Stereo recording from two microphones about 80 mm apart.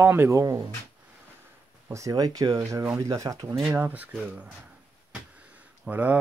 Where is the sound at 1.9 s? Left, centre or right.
Right.